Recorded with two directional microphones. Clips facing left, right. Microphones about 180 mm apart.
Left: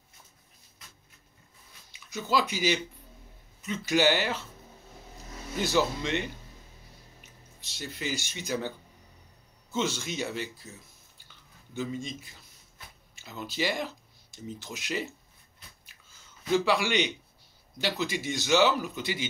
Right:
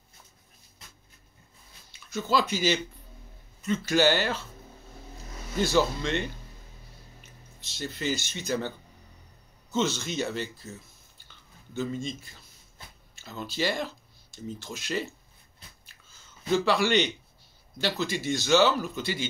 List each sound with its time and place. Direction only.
1.9 s a man's voice: 15° left (ahead or behind)
5.6 s a man's voice: 15° left (ahead or behind)
7.6 s a man's voice: 10° left (ahead or behind)
11.7 s a man's voice: 15° left (ahead or behind)
16.5 s a man's voice: 10° left (ahead or behind)